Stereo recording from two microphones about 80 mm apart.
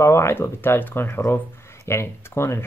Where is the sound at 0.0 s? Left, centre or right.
Left.